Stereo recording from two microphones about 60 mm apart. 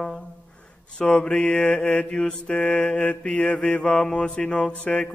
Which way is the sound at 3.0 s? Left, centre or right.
Left.